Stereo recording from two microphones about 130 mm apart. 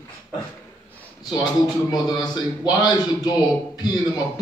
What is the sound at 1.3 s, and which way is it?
A man's voice, 30° left (ahead or behind).